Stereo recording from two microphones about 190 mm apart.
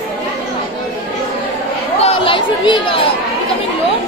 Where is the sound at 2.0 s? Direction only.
30° left (ahead or behind).